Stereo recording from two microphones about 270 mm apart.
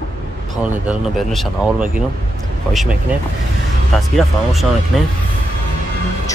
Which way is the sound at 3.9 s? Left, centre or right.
Centre.